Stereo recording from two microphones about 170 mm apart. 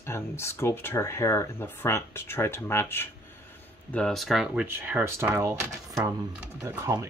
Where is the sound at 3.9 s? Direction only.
Centre (ahead or behind).